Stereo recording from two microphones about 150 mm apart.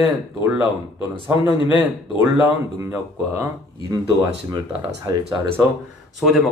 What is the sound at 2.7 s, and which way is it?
Speech, 20° right (ahead or behind).